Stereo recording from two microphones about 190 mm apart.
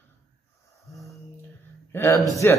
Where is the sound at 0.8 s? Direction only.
Centre (ahead or behind).